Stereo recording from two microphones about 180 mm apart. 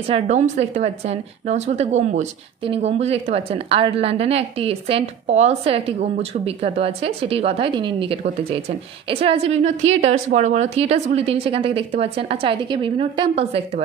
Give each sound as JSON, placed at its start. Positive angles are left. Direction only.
{"t": 0.1, "sound": "a woman's voice", "side_deg": -40}